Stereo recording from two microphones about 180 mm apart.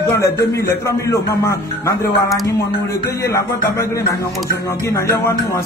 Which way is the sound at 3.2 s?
15° left (ahead or behind).